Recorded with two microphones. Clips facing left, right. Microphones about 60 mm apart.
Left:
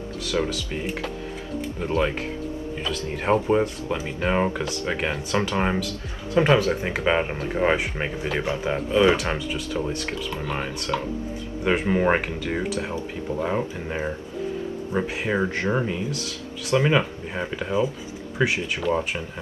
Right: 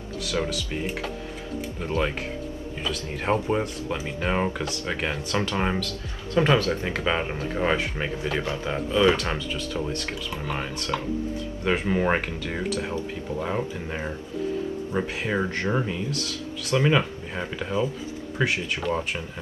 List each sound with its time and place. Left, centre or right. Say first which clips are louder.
0.2 s speech: left 2 dB; centre